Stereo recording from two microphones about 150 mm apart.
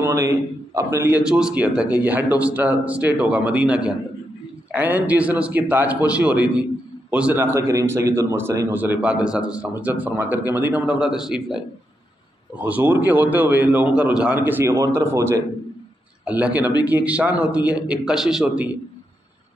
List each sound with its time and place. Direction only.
0.0 s a man's voice: 20° right (ahead or behind)
16.3 s a man's voice: 10° right (ahead or behind)